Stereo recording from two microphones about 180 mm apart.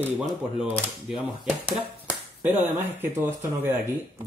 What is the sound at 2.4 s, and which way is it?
Speech, 10° right (ahead or behind).